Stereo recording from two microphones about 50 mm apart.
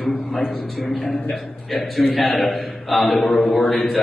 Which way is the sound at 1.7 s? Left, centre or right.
Centre.